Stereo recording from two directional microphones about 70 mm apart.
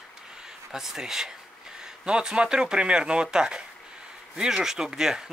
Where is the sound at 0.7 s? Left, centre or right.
Centre.